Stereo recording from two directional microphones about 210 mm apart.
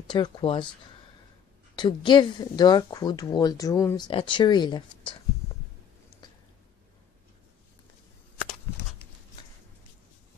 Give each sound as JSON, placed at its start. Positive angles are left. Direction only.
{"t": 0.1, "sound": "a woman's voice", "side_deg": 20}
{"t": 1.8, "sound": "a woman's voice", "side_deg": 20}
{"t": 6.2, "sound": "a sound", "side_deg": 20}